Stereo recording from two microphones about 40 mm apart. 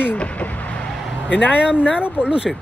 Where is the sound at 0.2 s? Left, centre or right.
Left.